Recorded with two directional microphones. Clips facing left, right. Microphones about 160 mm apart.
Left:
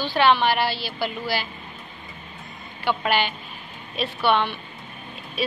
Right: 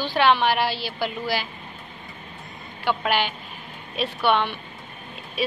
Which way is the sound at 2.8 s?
5° right (ahead or behind).